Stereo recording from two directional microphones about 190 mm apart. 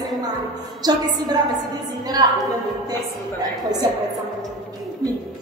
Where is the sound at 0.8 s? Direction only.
20° right (ahead or behind).